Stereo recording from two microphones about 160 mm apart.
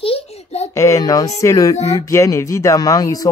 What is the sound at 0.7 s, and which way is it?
Speech, 20° left (ahead or behind).